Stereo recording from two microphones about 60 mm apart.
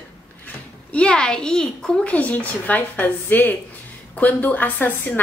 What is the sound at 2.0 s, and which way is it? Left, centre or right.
A woman's voice, left.